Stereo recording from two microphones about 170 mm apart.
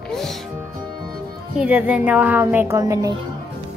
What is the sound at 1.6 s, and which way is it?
Speech, 10° right (ahead or behind).